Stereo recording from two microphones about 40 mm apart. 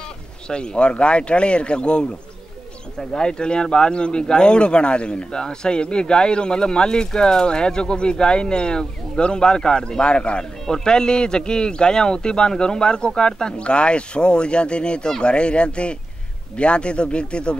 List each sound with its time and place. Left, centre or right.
0.5 s speech: left